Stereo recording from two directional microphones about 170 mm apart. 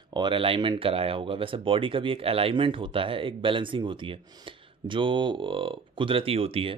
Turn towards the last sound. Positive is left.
turn(degrees=-35)  # may be behind; listen again after turning